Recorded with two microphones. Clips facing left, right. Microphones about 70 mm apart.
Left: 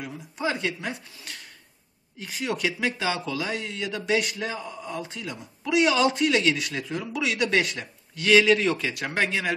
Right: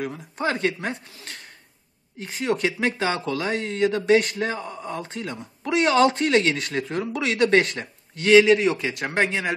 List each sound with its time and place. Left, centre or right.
0.0 s speech: right